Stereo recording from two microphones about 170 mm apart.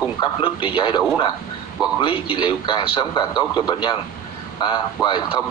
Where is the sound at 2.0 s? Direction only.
30° left (ahead or behind).